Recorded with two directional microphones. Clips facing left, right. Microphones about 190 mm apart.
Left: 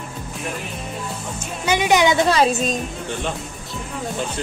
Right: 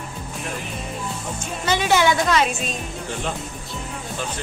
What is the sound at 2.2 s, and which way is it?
Speech, 35° left (ahead or behind).